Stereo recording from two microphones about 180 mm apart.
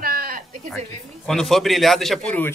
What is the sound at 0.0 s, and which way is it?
Sheep, 55° right (ahead or behind).